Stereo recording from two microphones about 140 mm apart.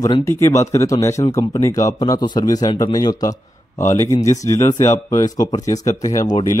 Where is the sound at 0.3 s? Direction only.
20° left (ahead or behind).